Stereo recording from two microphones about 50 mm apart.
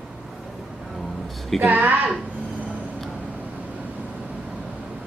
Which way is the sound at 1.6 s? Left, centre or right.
Right.